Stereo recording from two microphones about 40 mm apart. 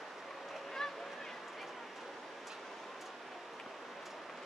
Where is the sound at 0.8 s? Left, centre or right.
Centre.